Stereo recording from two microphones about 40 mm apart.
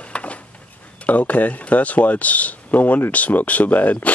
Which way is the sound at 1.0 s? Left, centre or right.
Left.